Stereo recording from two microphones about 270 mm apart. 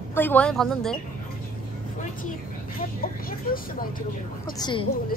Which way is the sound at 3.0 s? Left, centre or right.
Left.